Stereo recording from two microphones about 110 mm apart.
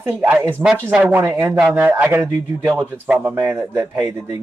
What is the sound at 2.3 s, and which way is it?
Speech, 40° right (ahead or behind).